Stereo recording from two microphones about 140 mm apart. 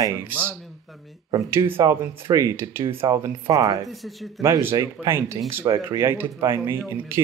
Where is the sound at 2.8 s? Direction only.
40° right (ahead or behind).